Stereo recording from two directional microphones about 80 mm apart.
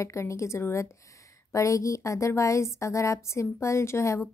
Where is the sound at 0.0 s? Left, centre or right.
Left.